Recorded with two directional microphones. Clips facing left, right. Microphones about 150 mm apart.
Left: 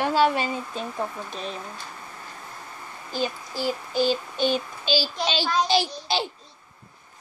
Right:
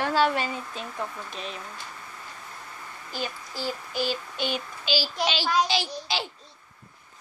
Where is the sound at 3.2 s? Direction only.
15° left (ahead or behind).